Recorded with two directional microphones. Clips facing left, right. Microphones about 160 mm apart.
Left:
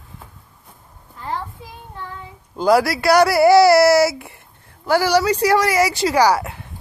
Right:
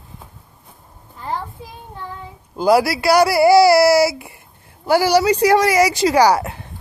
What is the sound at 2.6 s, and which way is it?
Speech, 10° right (ahead or behind).